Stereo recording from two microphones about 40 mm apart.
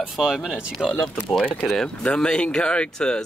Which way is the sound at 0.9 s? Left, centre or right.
Left.